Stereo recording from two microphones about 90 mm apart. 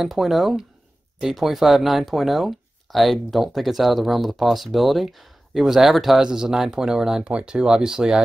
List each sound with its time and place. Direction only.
0.0 s speech: centre (ahead or behind)